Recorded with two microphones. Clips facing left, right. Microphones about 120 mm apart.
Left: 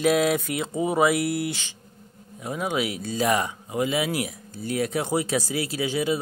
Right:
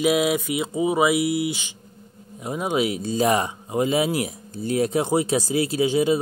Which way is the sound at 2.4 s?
20° right (ahead or behind).